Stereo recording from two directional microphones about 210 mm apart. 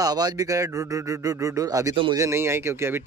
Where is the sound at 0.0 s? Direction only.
20° right (ahead or behind).